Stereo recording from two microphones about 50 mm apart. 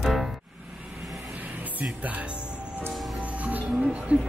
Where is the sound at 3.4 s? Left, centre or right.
Right.